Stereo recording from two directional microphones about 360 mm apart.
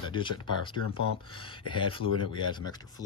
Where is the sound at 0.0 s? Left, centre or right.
Centre.